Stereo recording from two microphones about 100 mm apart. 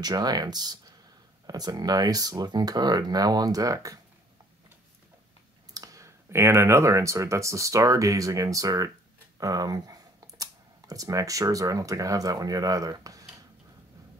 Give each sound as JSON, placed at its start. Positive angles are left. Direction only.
{"t": 0.0, "sound": "speech", "side_deg": -40}
{"t": 5.7, "sound": "speech", "side_deg": -35}